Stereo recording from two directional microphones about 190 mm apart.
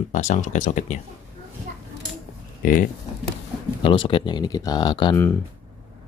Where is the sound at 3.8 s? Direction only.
25° left (ahead or behind).